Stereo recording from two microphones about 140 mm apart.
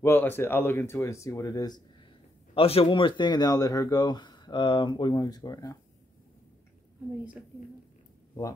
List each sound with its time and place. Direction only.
0.0 s speech: 15° left (ahead or behind)
2.5 s speech: 45° left (ahead or behind); by 5.8 s 25° left (ahead or behind)